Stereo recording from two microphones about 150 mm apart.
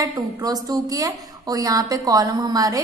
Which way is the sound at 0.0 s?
25° right (ahead or behind).